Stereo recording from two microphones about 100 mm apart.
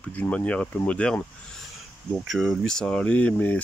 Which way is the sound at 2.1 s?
Centre (ahead or behind).